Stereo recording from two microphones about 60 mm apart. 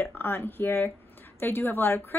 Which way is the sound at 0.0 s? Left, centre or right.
Left.